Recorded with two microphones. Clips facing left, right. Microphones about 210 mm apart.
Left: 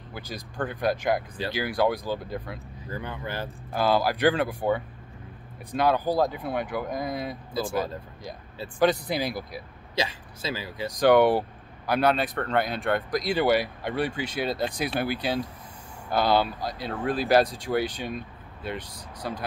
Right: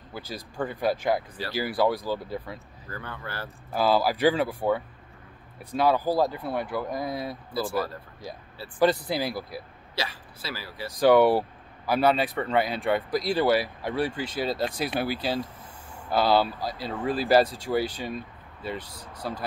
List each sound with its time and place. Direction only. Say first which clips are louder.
0.1 s speech: right 1 dB; 5° right (ahead or behind)
2.9 s speech: left 4 dB; 15° left (ahead or behind)
3.7 s speech: right 1 dB; 5° right (ahead or behind)
8.7 s speech: even; 5° right (ahead or behind)
9.9 s speech: left 4 dB; 20° left (ahead or behind)
11.0 s speech: even; 5° right (ahead or behind)